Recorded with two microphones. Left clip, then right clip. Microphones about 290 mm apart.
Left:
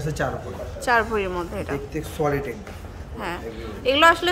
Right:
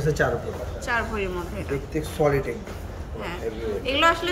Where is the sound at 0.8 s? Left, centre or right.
Centre.